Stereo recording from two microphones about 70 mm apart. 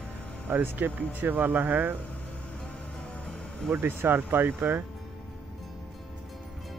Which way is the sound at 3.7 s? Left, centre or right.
Right.